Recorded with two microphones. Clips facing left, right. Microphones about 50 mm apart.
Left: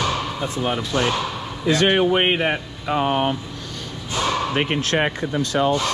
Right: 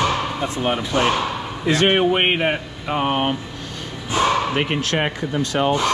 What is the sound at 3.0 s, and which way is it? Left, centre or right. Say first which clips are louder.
Speech: even; right.